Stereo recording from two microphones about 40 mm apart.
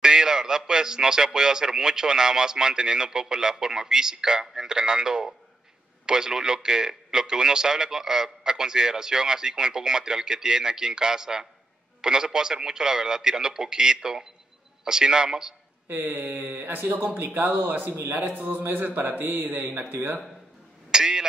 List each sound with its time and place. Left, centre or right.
0.0 s a man's voice: centre
15.9 s speech: right
20.9 s speech: centre